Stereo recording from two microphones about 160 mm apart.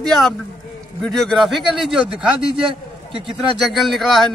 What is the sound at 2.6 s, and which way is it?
Speech, 35° right (ahead or behind).